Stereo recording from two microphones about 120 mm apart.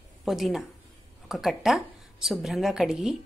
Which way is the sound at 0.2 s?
Centre (ahead or behind).